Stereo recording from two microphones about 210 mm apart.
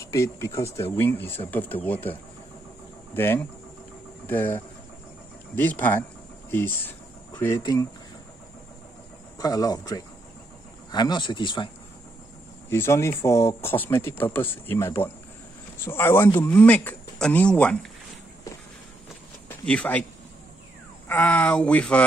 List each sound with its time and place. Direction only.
0.0 s speech: 15° left (ahead or behind)
4.3 s speech: 10° left (ahead or behind)
7.3 s speech: 15° left (ahead or behind)
9.4 s speech: 15° left (ahead or behind)
12.6 s speech: 10° left (ahead or behind)
19.6 s speech: 5° left (ahead or behind)
21.1 s speech: 5° left (ahead or behind)